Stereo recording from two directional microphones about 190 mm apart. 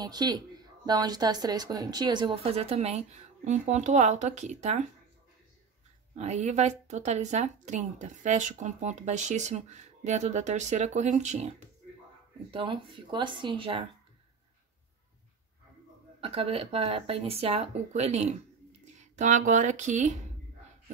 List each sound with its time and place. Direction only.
0.0 s speech: 20° right (ahead or behind); by 4.8 s 40° right (ahead or behind)
6.1 s speech: 35° right (ahead or behind)
16.2 s speech: 30° right (ahead or behind)